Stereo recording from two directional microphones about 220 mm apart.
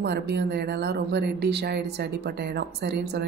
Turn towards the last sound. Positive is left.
turn(degrees=-50)  # may be behind; listen again after turning